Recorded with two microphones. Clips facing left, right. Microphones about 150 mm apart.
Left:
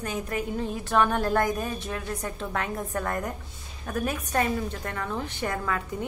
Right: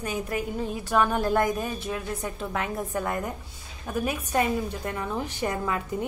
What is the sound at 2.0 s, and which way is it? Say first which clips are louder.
Speech: right 1 dB; 20° right (ahead or behind).